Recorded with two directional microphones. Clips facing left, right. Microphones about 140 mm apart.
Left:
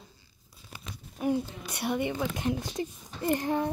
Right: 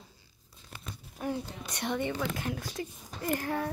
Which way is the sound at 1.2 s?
10° left (ahead or behind).